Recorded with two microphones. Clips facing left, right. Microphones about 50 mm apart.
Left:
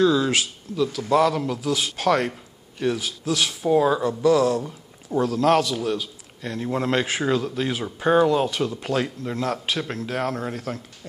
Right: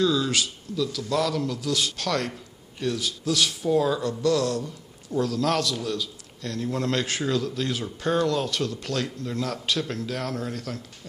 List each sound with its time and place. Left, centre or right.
0.0 s a man's voice: left